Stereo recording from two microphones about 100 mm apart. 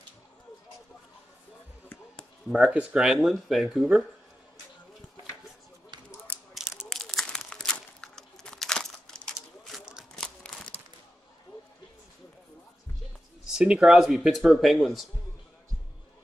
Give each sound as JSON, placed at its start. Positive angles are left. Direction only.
{"t": 2.5, "sound": "speech", "side_deg": -10}
{"t": 6.5, "sound": "crumpling", "side_deg": -5}
{"t": 9.8, "sound": "a sound", "side_deg": -5}
{"t": 10.1, "sound": "crumpling", "side_deg": 5}
{"t": 13.5, "sound": "speech", "side_deg": -5}